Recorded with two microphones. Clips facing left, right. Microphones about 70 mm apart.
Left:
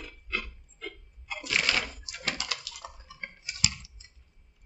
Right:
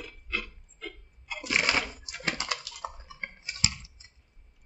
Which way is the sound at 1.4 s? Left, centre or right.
Right.